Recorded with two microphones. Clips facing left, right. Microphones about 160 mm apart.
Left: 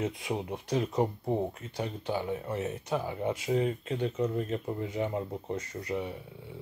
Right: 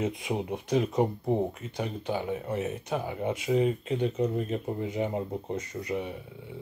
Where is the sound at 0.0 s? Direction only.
20° right (ahead or behind).